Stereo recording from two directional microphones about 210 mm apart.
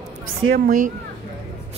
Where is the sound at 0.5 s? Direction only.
40° right (ahead or behind).